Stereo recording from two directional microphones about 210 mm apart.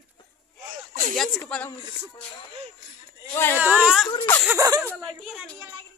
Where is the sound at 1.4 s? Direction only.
5° left (ahead or behind).